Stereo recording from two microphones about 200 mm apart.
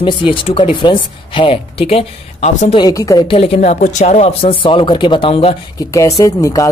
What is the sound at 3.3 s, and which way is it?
Speech, 30° left (ahead or behind).